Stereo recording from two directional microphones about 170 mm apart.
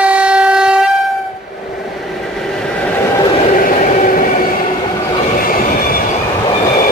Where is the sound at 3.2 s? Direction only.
35° left (ahead or behind).